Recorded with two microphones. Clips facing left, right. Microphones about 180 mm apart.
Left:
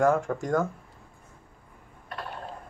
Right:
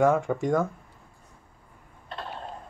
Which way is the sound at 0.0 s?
Centre (ahead or behind).